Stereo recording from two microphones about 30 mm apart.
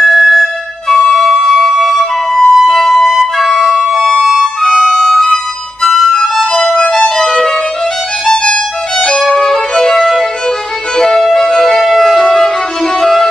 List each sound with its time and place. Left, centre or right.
0.1 s flute: centre
1.2 s music: centre
1.6 s flute: centre
3.9 s music: centre
4.2 s music: centre
6.5 s music: left
7.2 s music: centre
9.3 s violin: centre
11.0 s music: centre
12.4 s music: left